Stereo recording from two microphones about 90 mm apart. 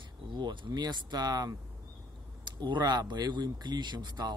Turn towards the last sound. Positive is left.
turn(degrees=-55)  # may be behind; listen again after turning